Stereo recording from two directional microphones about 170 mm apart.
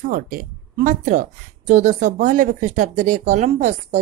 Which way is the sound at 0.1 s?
55° right (ahead or behind).